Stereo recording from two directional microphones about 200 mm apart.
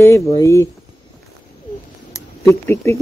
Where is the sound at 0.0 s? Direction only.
15° left (ahead or behind).